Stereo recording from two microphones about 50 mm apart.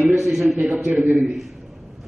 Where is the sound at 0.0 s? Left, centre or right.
Centre.